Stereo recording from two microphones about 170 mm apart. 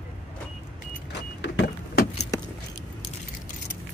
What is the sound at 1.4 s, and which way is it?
Vehicle, 90° left.